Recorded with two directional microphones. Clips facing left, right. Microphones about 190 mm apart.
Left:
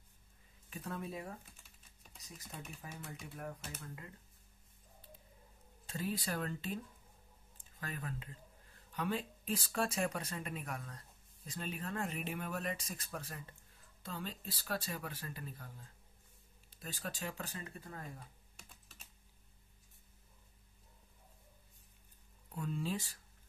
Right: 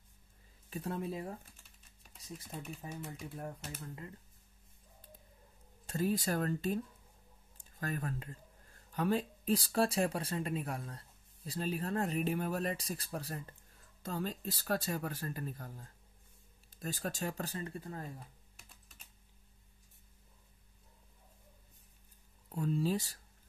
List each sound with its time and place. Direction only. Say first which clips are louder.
0.7 s speech: right 5 dB; 30° right (ahead or behind)
1.6 s typing: even; 5° right (ahead or behind)
2.3 s speech: right 5 dB; 30° right (ahead or behind)
5.9 s speech: right 6 dB; 45° right (ahead or behind)
18.6 s computer keyboard: left 3 dB; centre (ahead or behind)
22.6 s speech: right 6 dB; 35° right (ahead or behind)